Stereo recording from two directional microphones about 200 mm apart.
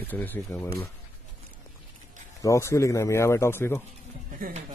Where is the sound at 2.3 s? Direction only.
15° left (ahead or behind).